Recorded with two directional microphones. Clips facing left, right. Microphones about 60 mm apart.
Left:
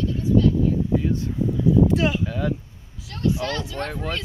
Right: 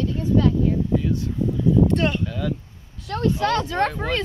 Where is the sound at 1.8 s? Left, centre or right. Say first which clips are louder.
Even; centre.